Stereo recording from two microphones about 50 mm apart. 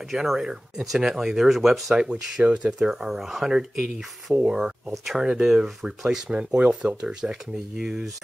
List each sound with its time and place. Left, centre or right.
0.1 s speech: centre
2.0 s speech: centre
2.8 s speech: centre
6.3 s speech: right; by 8.1 s centre